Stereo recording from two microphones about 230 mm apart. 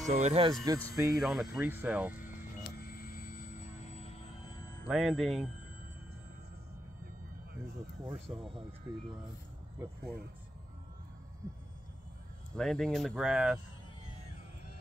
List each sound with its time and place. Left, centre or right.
0.0 s speech: right
0.7 s speech: centre
2.8 s vehicle: left
4.8 s speech: centre
8.3 s speech: centre
12.5 s speech: centre